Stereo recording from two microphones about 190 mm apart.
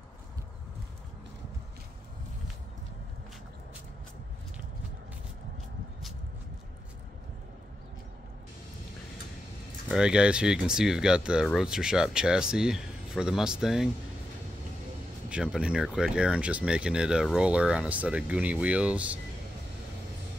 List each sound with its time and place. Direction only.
9.8 s speech: 5° right (ahead or behind)
15.2 s speech: 5° right (ahead or behind)